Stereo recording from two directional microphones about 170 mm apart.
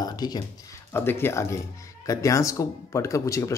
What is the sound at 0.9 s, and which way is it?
Speech, 15° left (ahead or behind).